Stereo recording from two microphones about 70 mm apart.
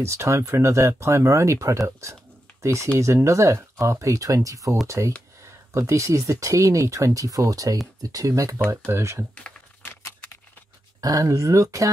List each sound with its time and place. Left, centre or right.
0.0 s speech: right
8.6 s speech: right
11.0 s speech: right